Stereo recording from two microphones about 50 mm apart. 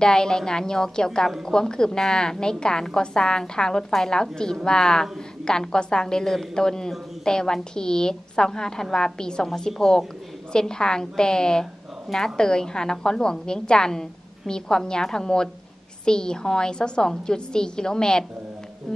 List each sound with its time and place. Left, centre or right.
0.0 s a woman's voice: centre